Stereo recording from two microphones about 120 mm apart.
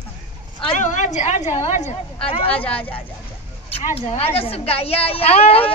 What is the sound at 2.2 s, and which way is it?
Speech, 50° left (ahead or behind).